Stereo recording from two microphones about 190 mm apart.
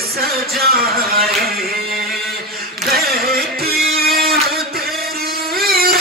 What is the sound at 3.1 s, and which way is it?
Music, 50° right (ahead or behind).